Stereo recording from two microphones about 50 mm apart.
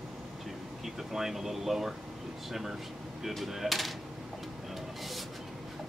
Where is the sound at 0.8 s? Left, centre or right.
Centre.